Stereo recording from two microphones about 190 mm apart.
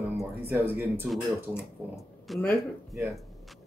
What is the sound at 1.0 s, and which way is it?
Speech, centre (ahead or behind).